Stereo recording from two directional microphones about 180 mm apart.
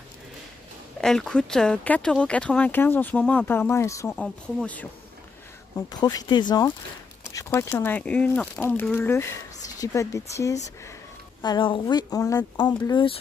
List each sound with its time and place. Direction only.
1.0 s speech: 5° left (ahead or behind)
5.9 s speech: 20° left (ahead or behind)